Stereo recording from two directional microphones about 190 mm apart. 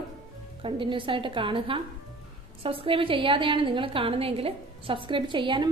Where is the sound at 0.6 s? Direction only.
25° right (ahead or behind).